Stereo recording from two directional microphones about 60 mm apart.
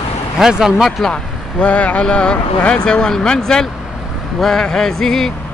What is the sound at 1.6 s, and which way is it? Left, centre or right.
Speech, left.